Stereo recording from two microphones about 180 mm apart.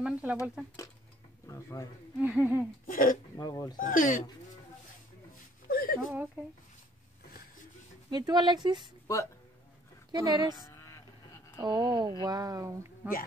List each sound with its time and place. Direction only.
0.0 s speech: 5° right (ahead or behind)
1.5 s speech: 15° left (ahead or behind)
2.1 s a sound: 10° right (ahead or behind)
2.9 s speech: 50° left (ahead or behind)
3.3 s speech: 20° left (ahead or behind)
3.7 s speech: 45° left (ahead or behind)
5.7 s whimper: 55° left (ahead or behind)
8.1 s speech: 20° right (ahead or behind)
9.0 s speech: 15° left (ahead or behind)
10.1 s speech: 20° right (ahead or behind)
10.7 s vehicle: 15° left (ahead or behind)
11.5 s speech: 25° right (ahead or behind)
13.0 s a sound: 10° right (ahead or behind)